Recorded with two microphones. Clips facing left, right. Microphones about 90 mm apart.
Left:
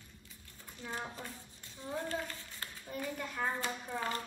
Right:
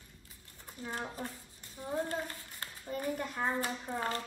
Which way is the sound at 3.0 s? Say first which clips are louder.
Right 2 dB; 20° right (ahead or behind).